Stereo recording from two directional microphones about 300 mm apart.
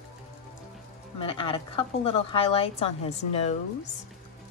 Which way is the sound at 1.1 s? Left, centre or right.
Centre.